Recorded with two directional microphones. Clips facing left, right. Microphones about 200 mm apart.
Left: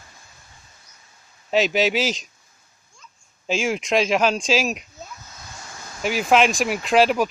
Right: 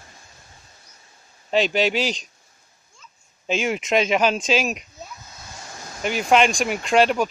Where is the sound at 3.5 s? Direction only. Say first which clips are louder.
Even; centre (ahead or behind).